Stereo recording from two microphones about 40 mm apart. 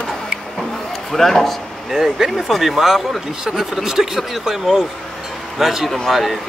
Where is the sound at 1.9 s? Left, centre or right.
Centre.